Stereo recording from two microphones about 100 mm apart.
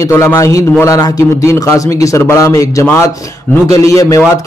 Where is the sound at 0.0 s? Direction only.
30° left (ahead or behind).